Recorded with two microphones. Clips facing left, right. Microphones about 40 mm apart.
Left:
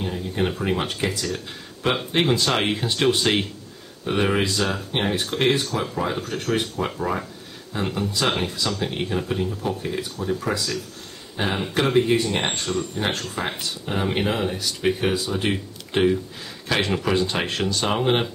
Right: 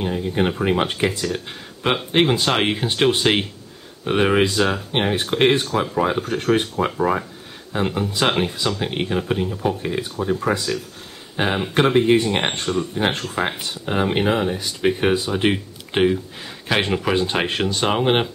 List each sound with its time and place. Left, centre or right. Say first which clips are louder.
0.0 s speech: right 4 dB; right